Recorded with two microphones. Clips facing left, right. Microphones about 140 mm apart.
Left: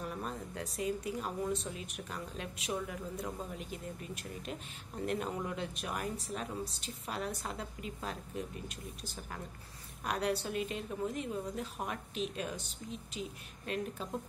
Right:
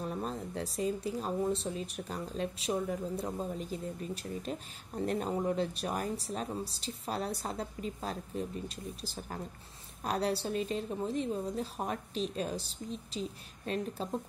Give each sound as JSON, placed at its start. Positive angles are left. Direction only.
{"t": 0.0, "sound": "speech", "side_deg": -30}